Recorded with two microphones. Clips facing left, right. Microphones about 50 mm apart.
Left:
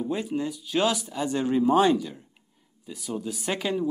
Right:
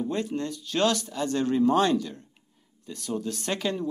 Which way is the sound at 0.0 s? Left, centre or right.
Centre.